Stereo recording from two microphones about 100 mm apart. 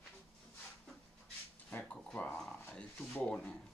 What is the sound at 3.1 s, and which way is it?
Speech, 10° left (ahead or behind).